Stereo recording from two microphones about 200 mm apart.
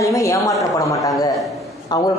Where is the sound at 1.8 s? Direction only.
15° left (ahead or behind).